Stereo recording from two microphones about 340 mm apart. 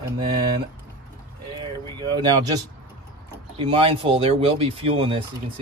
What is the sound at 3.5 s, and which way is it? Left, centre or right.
Speech, centre.